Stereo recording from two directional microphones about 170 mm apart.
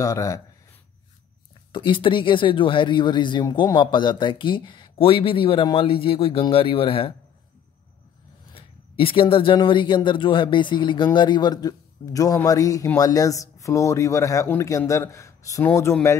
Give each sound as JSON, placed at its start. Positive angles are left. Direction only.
{"t": 0.0, "sound": "speech", "side_deg": 20}
{"t": 1.7, "sound": "a man's voice", "side_deg": 30}
{"t": 8.5, "sound": "speech", "side_deg": 30}